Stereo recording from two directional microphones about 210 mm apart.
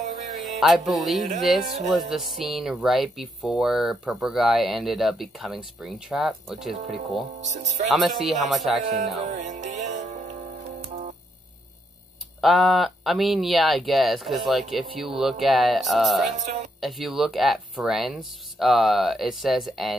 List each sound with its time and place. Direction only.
0.6 s speech: centre (ahead or behind)
8.8 s speech: 35° right (ahead or behind)
9.2 s music: 35° right (ahead or behind)
12.4 s speech: centre (ahead or behind)
16.3 s speech: 30° right (ahead or behind)
16.8 s speech: centre (ahead or behind)